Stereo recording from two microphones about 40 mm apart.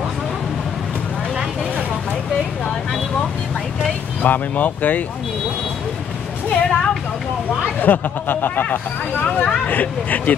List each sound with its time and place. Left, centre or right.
4.2 s speech: left
6.5 s a sound: centre
7.8 s speech: left
8.6 s speech: left